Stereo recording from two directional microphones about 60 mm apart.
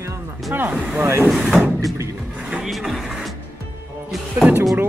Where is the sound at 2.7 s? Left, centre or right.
Centre.